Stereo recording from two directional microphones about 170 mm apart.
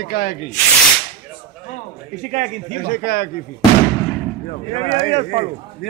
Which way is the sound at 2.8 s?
65° left (ahead or behind).